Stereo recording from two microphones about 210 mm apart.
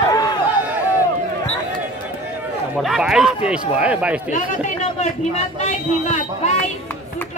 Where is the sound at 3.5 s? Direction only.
5° right (ahead or behind).